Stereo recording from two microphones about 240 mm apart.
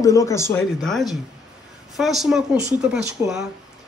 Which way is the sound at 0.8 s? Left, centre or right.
Centre.